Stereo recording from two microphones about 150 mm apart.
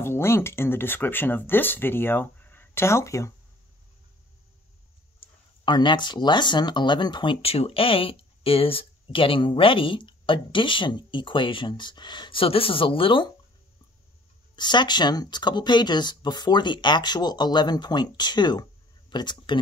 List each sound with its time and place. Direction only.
0.0 s speech: 15° left (ahead or behind)
5.2 s speech: 30° left (ahead or behind)
14.5 s speech: 30° left (ahead or behind)